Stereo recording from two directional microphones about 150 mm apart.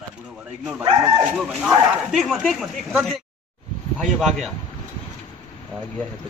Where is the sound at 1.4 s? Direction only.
Centre (ahead or behind).